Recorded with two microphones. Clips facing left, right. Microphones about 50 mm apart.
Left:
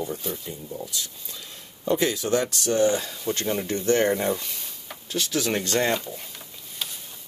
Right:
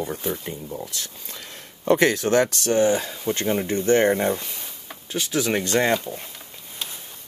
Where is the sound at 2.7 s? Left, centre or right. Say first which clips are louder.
Right 2 dB; right.